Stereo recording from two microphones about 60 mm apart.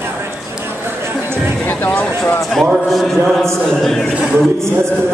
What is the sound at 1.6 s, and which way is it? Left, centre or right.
Music, left.